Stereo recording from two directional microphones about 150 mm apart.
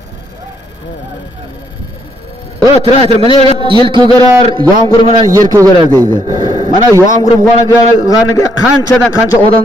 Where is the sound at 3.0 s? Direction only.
40° right (ahead or behind).